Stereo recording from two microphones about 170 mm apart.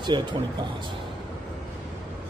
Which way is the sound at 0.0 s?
25° right (ahead or behind).